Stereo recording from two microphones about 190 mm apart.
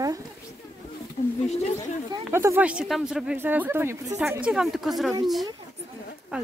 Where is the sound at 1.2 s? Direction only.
40° left (ahead or behind).